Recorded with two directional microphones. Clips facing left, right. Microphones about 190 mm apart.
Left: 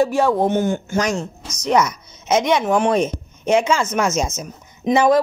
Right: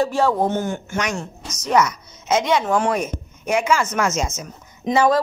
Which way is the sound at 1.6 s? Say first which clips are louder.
Left 1 dB; 20° left (ahead or behind).